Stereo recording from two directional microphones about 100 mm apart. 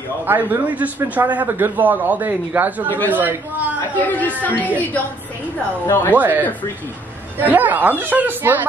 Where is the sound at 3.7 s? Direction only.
20° left (ahead or behind).